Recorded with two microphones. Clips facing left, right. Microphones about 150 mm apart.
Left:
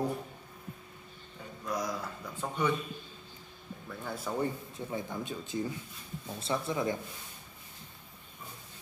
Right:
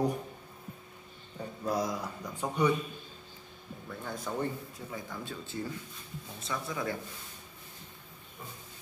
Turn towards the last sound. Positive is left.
turn(degrees=25)  # may be behind; listen again after turning